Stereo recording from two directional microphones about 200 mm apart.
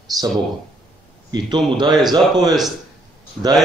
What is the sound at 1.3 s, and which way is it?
Speech, 20° right (ahead or behind).